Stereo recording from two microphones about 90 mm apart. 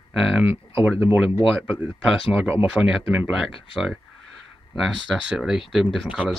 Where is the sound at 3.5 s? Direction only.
80° left.